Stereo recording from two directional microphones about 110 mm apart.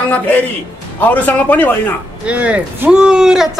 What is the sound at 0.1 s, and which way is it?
Speech, 15° left (ahead or behind).